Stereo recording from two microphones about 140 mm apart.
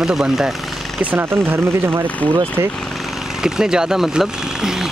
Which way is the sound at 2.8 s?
Centre (ahead or behind).